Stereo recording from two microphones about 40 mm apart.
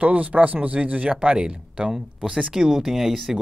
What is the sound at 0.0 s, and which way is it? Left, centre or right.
Speech, right.